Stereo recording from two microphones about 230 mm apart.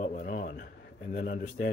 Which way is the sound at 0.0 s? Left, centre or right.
Left.